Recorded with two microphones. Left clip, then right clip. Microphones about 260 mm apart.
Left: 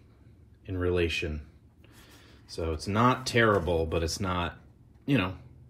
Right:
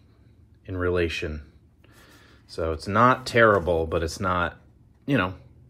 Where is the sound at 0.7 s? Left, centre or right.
Right.